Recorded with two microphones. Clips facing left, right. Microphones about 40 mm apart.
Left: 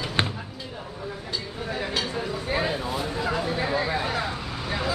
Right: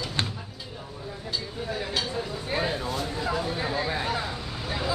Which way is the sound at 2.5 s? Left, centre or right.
Centre.